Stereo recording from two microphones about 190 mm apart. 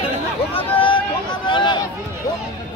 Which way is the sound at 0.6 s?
30° left (ahead or behind).